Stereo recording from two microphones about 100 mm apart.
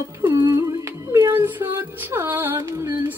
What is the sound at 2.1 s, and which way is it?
Music, 20° right (ahead or behind).